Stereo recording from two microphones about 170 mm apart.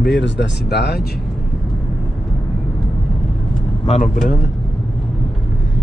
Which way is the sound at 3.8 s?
40° left (ahead or behind).